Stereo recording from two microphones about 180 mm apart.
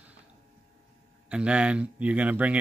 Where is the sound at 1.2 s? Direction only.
5° right (ahead or behind).